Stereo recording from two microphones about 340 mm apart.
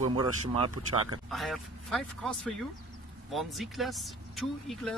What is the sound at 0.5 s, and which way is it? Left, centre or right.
Speech, right.